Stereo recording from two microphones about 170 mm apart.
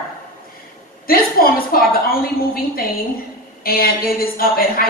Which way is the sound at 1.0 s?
60° left (ahead or behind).